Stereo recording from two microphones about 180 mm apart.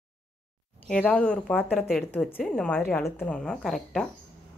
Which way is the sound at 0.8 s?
5° left (ahead or behind).